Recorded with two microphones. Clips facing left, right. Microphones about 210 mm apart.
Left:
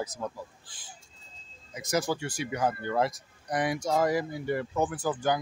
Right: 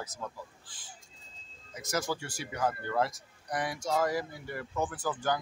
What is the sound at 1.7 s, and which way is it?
Speech, 15° left (ahead or behind).